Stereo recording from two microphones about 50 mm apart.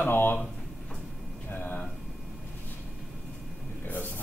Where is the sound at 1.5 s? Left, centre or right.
Left.